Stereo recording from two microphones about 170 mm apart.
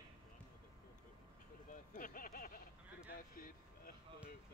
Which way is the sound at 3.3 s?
55° left (ahead or behind).